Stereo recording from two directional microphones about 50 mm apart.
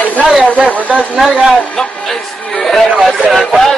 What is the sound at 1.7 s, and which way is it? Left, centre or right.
Music, centre.